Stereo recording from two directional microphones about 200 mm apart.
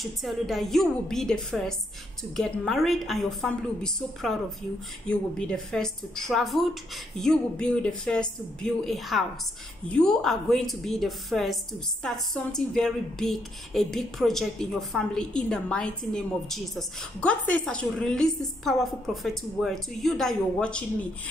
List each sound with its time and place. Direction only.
0.0 s a woman's voice: centre (ahead or behind)